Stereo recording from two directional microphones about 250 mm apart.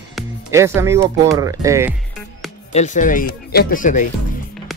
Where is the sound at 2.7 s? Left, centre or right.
Left.